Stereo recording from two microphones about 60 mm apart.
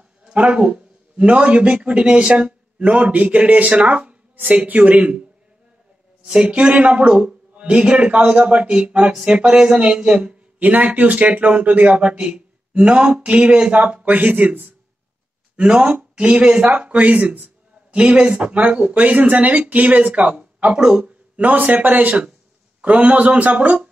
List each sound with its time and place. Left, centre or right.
0.3 s a man's voice: centre
6.2 s speech: centre
15.5 s speech: centre